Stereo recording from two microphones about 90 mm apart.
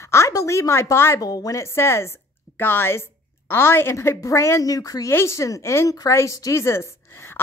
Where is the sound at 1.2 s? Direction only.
45° left (ahead or behind).